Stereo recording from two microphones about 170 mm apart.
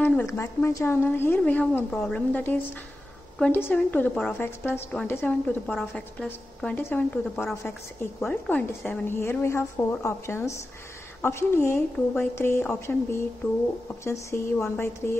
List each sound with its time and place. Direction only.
0.0 s a woman's voice: 10° left (ahead or behind)